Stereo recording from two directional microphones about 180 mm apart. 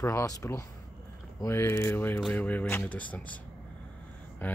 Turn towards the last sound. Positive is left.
turn(degrees=10)  # may be behind; listen again after turning